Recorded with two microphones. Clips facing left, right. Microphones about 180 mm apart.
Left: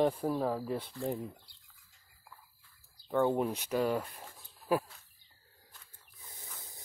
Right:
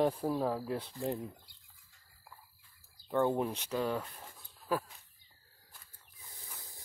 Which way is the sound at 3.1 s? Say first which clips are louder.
Left 1 dB; centre (ahead or behind).